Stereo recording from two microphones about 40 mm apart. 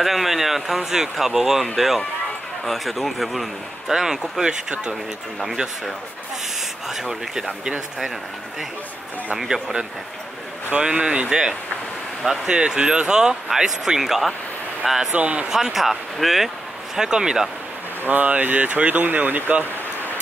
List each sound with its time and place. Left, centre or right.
0.0 s speech: centre
3.9 s speech: centre
6.9 s speech: centre
9.4 s speech: centre
10.7 s speech: right
15.0 s speech: right
15.5 s speech: centre
16.9 s speech: centre
18.0 s speech: right